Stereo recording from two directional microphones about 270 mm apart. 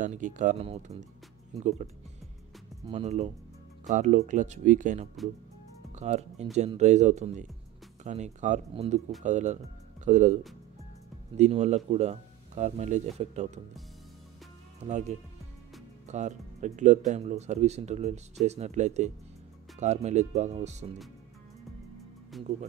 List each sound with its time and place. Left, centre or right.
0.0 s speech: right
2.9 s speech: right
14.8 s speech: right